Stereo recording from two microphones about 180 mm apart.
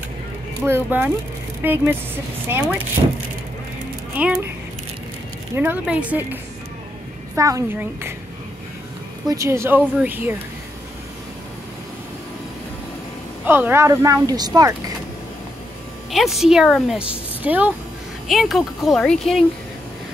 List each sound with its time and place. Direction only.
0.7 s a woman's voice: 10° right (ahead or behind)
4.1 s speech: 10° right (ahead or behind)
5.6 s a woman's voice: 10° right (ahead or behind)
9.3 s a woman's voice: 15° right (ahead or behind)
13.5 s a woman's voice: 10° right (ahead or behind)
16.1 s speech: centre (ahead or behind)